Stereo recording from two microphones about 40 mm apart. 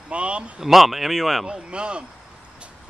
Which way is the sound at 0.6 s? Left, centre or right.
Centre.